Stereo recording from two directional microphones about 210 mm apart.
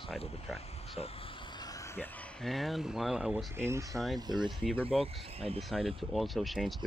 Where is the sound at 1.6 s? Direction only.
10° left (ahead or behind).